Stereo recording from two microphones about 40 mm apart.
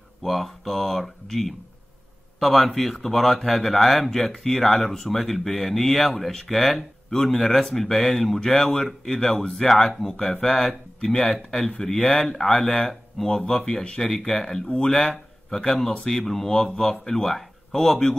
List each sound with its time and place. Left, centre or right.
0.2 s speech: centre
14.0 s speech: centre
15.0 s a sound: centre
16.0 s speech: centre